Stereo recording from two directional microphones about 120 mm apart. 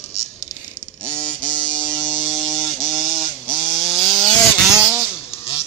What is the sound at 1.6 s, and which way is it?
Electric shaver, 35° left (ahead or behind).